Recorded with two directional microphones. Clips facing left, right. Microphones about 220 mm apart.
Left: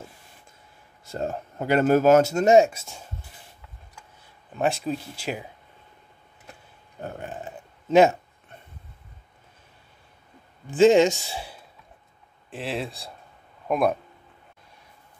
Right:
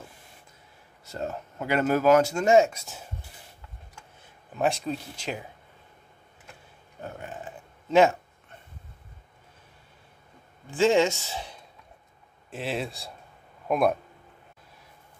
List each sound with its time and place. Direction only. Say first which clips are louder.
1.1 s speech: left 4 dB; 30° left (ahead or behind)
2.0 s speech: left 2 dB; 45° left (ahead or behind)
2.4 s speech: left 3 dB; 20° left (ahead or behind)
2.7 s speech: even; centre (ahead or behind)
4.6 s speech: left 2 dB; centre (ahead or behind)
7.9 s speech: left 3 dB; 15° left (ahead or behind)
10.8 s speech: left 5 dB; 20° left (ahead or behind); by 13.9 s centre (ahead or behind)